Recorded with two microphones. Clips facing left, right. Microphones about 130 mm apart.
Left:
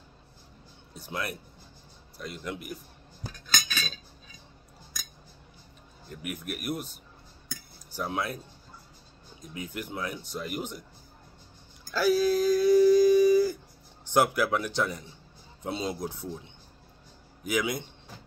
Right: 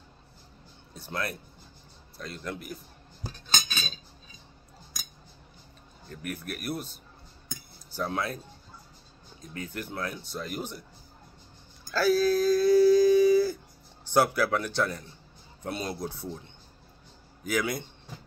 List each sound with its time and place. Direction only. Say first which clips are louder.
0.9 s speech: right 1 dB; 10° left (ahead or behind)
3.4 s cutlery: even; 30° right (ahead or behind)
6.0 s speech: even; 15° left (ahead or behind)
7.9 s speech: right 1 dB; 10° left (ahead or behind)
9.4 s speech: even; 10° left (ahead or behind)
11.9 s a sound: even; 15° left (ahead or behind)
14.0 s speech: even; 15° left (ahead or behind)
17.4 s speech: even; 15° left (ahead or behind)